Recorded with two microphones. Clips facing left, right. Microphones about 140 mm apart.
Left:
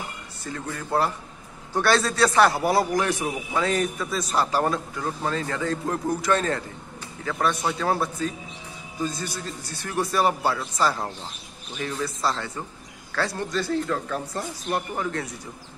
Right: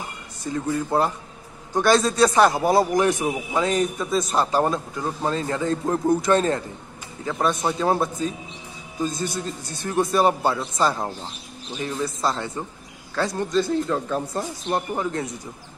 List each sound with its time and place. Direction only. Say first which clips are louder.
0.4 s a man's voice: right 8 dB; 15° right (ahead or behind)